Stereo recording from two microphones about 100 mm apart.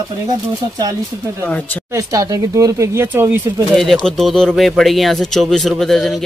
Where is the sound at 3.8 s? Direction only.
5° left (ahead or behind).